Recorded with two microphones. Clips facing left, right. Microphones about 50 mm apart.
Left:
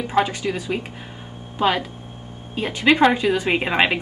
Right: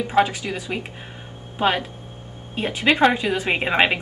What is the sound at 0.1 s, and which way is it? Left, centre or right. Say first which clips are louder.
Speech: even; centre.